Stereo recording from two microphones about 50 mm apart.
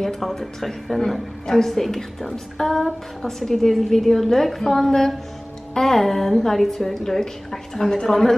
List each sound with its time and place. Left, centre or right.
0.0 s a woman's voice: centre